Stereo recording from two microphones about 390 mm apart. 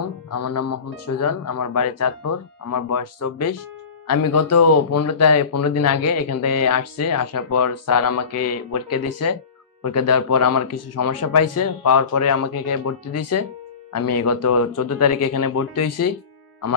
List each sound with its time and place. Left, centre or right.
0.3 s speech: left